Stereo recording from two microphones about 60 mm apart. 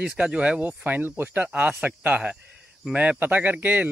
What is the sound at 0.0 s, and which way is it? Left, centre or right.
A man's voice, centre.